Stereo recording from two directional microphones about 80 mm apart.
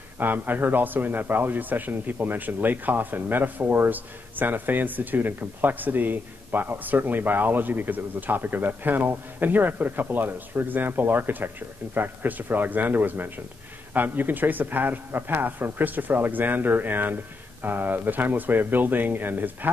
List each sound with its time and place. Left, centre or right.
0.2 s a man's voice: right